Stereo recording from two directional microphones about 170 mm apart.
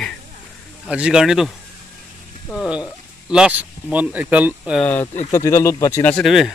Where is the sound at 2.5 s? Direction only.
Centre (ahead or behind).